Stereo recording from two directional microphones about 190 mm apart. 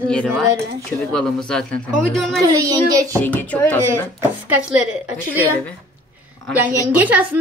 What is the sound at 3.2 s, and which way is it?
Speech, 10° left (ahead or behind).